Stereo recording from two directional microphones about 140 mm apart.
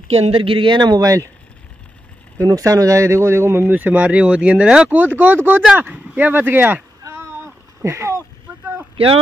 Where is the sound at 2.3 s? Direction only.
25° right (ahead or behind).